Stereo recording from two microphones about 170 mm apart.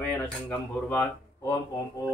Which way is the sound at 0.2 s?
10° left (ahead or behind).